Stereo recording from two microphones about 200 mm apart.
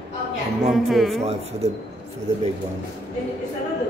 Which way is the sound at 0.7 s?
Centre (ahead or behind).